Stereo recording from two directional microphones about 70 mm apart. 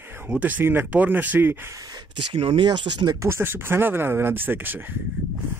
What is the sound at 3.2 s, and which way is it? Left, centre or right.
Speech, right.